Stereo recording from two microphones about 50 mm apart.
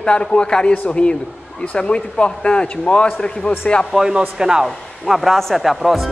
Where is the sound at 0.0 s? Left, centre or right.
Centre.